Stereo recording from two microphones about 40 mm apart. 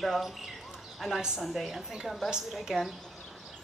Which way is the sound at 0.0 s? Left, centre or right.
Centre.